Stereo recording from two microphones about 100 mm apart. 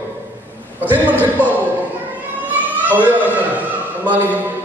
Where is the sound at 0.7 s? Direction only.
15° right (ahead or behind).